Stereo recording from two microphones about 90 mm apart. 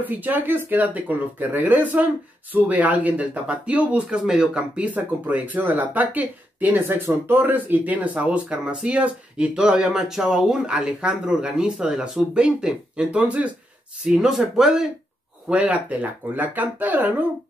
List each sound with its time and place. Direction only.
0.0 s speech: 20° right (ahead or behind)